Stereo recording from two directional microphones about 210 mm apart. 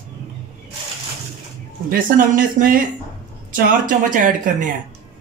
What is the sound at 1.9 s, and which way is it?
Speech, 40° right (ahead or behind).